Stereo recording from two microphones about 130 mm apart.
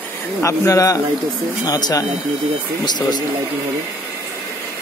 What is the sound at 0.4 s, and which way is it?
Speech, 25° left (ahead or behind).